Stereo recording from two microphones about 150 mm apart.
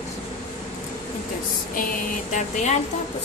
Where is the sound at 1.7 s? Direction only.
65° left (ahead or behind).